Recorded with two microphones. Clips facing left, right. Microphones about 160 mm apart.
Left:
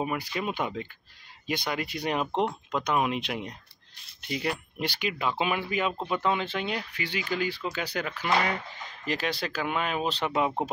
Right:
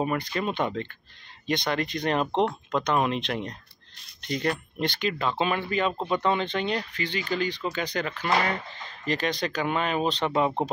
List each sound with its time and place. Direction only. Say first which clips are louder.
0.0 s speech: right 3 dB; 5° left (ahead or behind)